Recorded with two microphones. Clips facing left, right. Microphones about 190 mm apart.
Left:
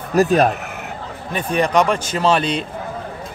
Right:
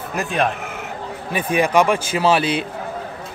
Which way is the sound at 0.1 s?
40° left (ahead or behind).